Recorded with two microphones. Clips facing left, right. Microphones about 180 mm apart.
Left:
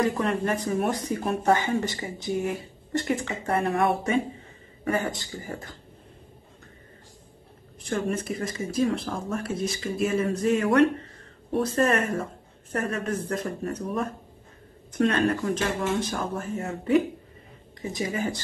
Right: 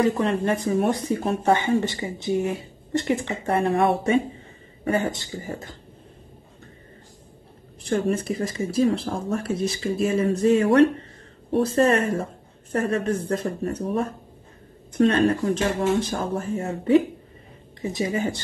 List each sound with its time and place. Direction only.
0.0 s speech: 25° right (ahead or behind)
7.8 s speech: 30° right (ahead or behind)